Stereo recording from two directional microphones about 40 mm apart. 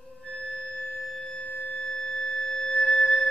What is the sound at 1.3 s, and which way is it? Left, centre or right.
Singing bowl, left.